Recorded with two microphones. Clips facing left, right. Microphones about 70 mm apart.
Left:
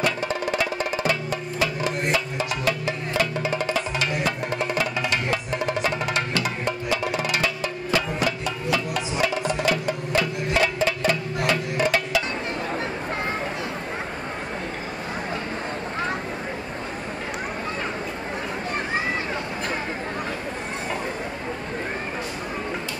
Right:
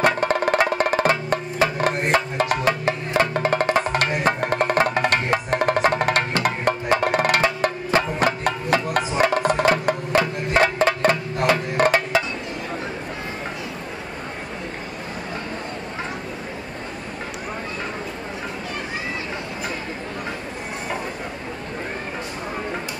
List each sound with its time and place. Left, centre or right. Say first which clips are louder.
0.0 s music: right 6 dB; right